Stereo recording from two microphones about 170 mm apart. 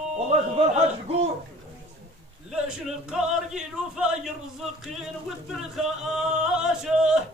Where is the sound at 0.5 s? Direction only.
35° right (ahead or behind).